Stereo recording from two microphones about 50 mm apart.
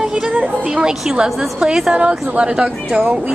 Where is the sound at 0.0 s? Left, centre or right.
Centre.